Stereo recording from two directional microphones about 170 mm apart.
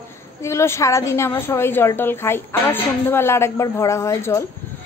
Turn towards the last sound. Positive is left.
turn(degrees=15)  # may be behind; listen again after turning